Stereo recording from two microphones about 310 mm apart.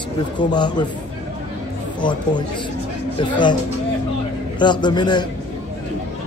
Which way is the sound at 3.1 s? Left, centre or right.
Centre.